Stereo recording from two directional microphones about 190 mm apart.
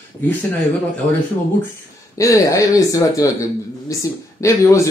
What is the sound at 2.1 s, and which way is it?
A man's voice, 15° left (ahead or behind).